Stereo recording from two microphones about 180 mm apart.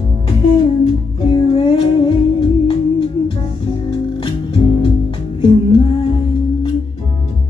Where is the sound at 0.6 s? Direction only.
30° left (ahead or behind).